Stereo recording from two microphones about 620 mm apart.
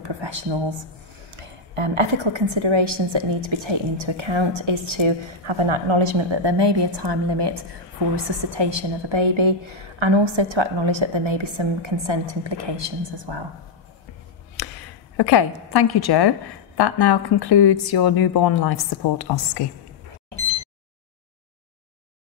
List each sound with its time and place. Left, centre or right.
0.0 s a woman's voice: right
8.5 s a woman's voice: right
15.1 s a woman's voice: left